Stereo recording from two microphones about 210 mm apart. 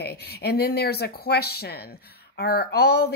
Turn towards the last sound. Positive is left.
turn(degrees=50)  # may be behind; listen again after turning